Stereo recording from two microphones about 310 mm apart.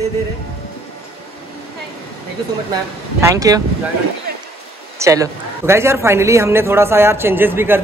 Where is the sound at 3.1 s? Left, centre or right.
Centre.